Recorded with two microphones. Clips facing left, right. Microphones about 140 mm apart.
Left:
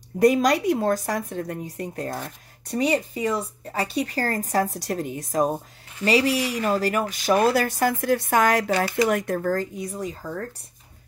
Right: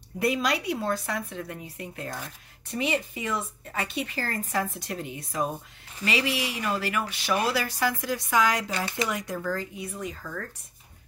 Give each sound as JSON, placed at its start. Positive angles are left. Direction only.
{"t": 0.2, "sound": "speech", "side_deg": 45}